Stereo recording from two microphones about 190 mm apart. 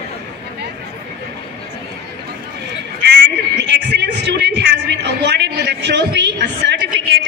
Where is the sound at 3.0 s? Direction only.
65° right (ahead or behind).